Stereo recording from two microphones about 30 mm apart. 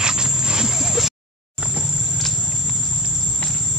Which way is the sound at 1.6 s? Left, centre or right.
Right.